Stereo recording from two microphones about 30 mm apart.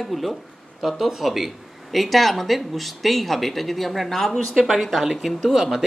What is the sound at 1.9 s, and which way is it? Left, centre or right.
Speech, centre.